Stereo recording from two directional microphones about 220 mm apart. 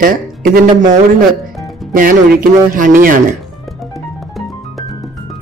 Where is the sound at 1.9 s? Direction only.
40° right (ahead or behind).